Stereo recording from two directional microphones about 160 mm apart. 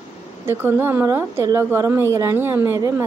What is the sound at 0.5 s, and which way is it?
A woman's voice, 15° right (ahead or behind).